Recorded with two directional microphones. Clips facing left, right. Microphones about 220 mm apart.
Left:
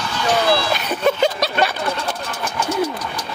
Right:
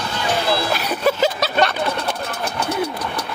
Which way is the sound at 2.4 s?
60° right (ahead or behind).